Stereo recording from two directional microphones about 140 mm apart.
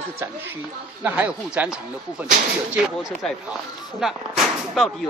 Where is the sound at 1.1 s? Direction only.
10° right (ahead or behind).